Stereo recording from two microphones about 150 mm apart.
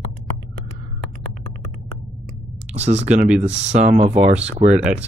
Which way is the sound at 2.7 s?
50° right (ahead or behind).